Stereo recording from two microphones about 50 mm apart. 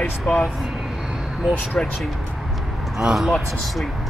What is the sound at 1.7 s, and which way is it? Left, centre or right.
Speech, centre.